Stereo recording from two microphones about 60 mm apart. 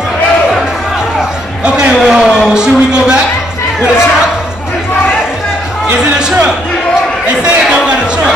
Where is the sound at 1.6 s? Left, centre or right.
Centre.